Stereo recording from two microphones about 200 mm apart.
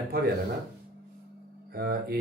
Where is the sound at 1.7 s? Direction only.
50° right (ahead or behind).